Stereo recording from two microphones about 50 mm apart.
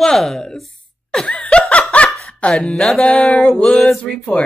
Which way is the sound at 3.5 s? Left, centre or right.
Centre.